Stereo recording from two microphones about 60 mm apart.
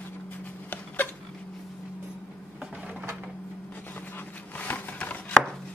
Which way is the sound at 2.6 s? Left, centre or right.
Centre.